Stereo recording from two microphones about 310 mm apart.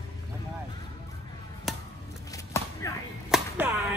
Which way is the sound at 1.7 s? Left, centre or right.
Centre.